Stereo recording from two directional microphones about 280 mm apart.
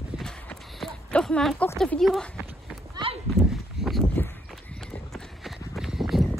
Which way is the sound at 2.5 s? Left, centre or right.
Centre.